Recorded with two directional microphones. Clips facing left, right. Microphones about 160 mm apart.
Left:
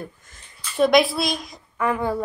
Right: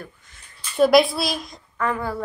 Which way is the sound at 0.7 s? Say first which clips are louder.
Right 1 dB; centre (ahead or behind).